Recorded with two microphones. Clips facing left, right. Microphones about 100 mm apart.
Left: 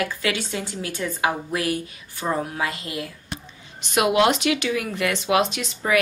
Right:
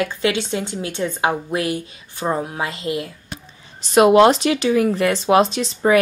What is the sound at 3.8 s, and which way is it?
Speech, 35° right (ahead or behind).